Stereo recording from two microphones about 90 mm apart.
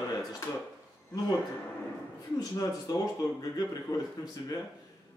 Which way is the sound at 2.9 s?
45° left (ahead or behind).